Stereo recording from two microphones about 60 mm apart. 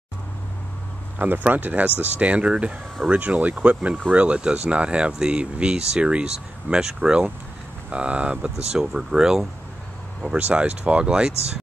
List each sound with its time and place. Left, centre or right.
1.1 s speech: right; by 9.5 s centre
10.2 s speech: centre